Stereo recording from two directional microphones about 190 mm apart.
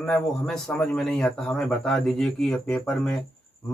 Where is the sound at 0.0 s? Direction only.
5° left (ahead or behind).